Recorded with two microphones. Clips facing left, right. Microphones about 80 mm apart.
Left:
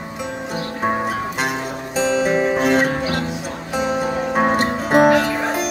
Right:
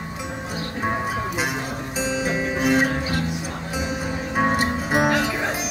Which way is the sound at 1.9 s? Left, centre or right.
Centre.